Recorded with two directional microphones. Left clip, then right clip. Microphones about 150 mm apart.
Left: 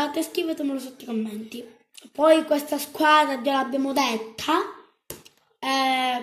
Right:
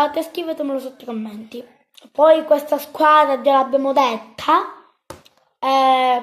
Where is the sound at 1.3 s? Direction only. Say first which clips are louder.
Right 3 dB; 60° right (ahead or behind).